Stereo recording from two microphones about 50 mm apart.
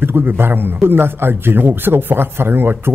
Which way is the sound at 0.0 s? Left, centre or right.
Right.